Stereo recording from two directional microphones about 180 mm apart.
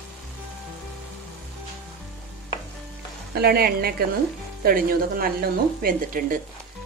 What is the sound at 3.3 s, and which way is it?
A woman's voice, 60° right (ahead or behind).